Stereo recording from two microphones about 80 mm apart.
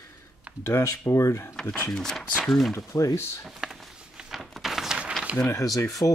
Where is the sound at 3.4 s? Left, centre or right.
Centre.